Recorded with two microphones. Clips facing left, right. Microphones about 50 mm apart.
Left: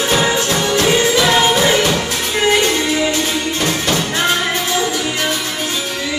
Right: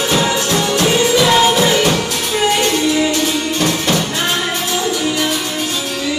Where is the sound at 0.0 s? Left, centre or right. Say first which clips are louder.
Even; centre.